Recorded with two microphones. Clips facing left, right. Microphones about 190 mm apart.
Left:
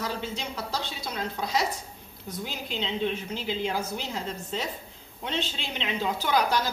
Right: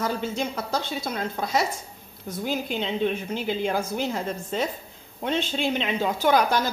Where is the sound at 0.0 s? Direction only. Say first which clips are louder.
Right 6 dB; 50° right (ahead or behind).